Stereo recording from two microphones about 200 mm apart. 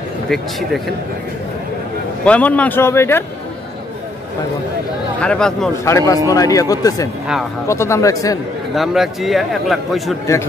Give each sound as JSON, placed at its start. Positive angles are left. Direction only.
{"t": 2.2, "sound": "a man's voice", "side_deg": 5}
{"t": 5.2, "sound": "a man's voice", "side_deg": 5}
{"t": 5.9, "sound": "a man's voice", "side_deg": 15}
{"t": 8.7, "sound": "a man's voice", "side_deg": 0}